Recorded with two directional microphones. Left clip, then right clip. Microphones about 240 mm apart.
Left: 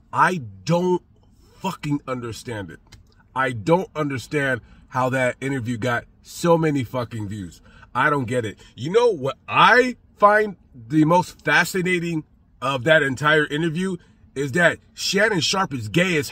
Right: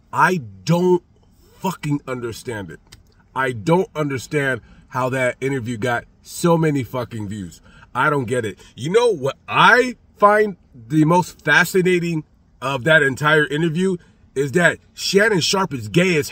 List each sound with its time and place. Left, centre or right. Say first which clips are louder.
0.1 s speech: right 2 dB; centre